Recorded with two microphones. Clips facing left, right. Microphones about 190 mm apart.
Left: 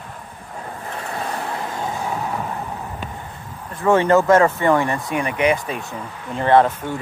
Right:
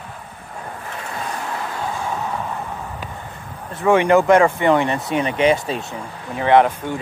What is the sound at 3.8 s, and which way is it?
Speech, 15° right (ahead or behind).